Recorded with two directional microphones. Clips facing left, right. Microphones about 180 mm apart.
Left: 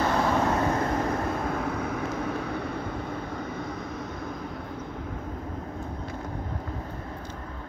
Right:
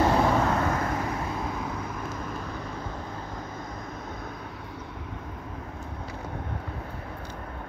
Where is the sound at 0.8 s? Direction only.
50° left (ahead or behind); by 3.7 s 65° left (ahead or behind).